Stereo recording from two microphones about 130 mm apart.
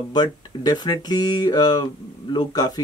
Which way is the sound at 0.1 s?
30° left (ahead or behind).